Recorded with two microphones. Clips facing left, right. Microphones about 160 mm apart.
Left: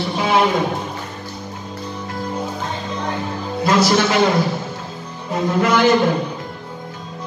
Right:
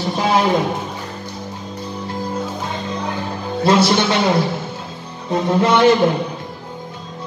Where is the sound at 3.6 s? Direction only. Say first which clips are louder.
Right 1 dB; 30° right (ahead or behind).